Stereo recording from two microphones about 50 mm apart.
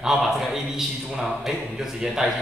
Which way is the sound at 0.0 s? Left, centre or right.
Centre.